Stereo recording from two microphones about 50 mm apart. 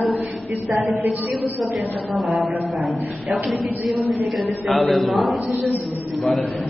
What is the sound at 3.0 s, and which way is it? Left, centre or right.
Speech, right.